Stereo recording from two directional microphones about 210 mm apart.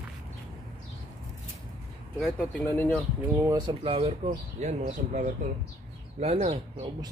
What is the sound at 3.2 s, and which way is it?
Speech, 15° right (ahead or behind).